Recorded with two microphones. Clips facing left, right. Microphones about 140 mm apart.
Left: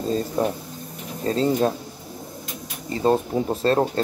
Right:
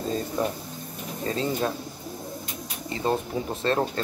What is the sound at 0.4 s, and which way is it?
Speech, 40° left (ahead or behind).